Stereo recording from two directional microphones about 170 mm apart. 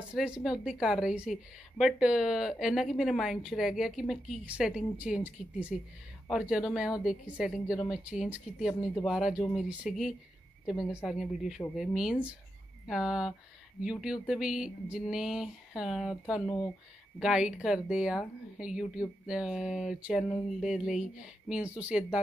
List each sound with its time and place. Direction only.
0.1 s a woman's voice: 5° right (ahead or behind)
16.4 s speech: 20° left (ahead or behind)
17.2 s a woman's voice: 5° right (ahead or behind)